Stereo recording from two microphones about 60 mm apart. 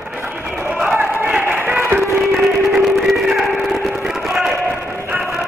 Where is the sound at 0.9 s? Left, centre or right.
Right.